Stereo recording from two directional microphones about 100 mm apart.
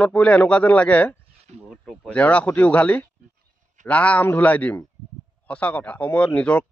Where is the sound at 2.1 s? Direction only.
15° left (ahead or behind).